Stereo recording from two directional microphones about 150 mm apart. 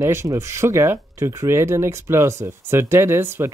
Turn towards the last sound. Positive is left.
turn(degrees=-15)  # may be behind; listen again after turning